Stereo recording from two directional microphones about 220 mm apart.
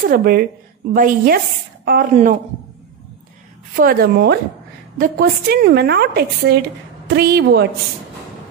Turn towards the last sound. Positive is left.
turn(degrees=-45)  # may be behind; listen again after turning